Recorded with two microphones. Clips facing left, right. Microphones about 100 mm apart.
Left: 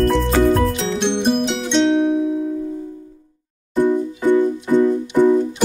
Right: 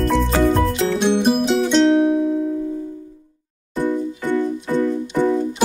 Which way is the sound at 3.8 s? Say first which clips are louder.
Left 4 dB; 15° left (ahead or behind).